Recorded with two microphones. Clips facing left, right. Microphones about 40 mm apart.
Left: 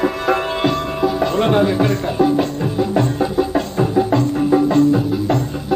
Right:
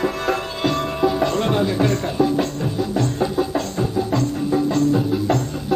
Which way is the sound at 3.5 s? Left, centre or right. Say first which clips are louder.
Left 5 dB; left.